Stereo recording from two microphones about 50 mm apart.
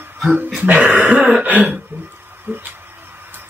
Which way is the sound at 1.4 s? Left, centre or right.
Right.